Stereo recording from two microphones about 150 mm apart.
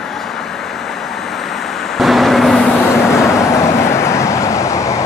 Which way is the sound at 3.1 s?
20° left (ahead or behind).